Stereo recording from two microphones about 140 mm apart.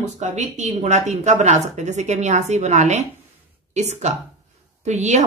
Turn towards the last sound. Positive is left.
turn(degrees=-55)  # may be behind; listen again after turning